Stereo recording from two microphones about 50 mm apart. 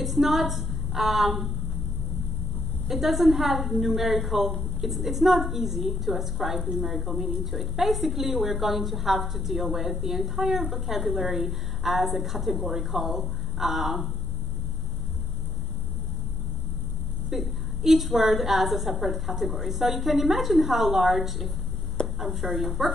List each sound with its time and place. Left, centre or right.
0.0 s a woman's voice: centre
2.9 s a woman's voice: centre
17.3 s a woman's voice: centre